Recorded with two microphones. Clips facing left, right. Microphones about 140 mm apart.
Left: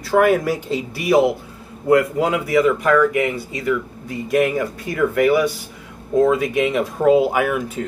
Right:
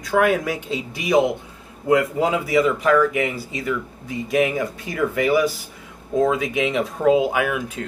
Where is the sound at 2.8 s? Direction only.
Centre (ahead or behind).